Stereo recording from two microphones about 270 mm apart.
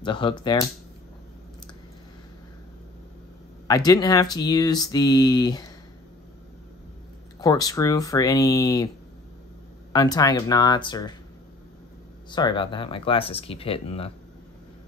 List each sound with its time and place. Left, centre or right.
0.0 s speech: centre
3.6 s speech: centre
7.3 s speech: centre
9.9 s speech: centre
12.3 s speech: centre